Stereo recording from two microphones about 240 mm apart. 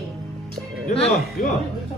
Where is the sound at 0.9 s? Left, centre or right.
Left.